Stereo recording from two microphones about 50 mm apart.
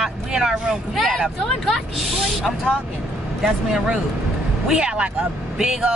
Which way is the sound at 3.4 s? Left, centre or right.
Centre.